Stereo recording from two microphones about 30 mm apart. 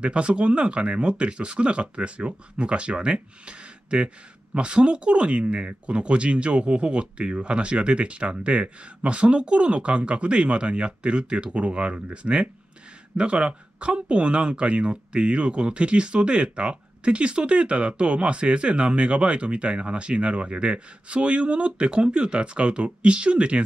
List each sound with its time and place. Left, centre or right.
0.0 s speech: right